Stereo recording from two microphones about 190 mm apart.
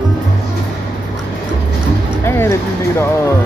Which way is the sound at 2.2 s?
15° left (ahead or behind).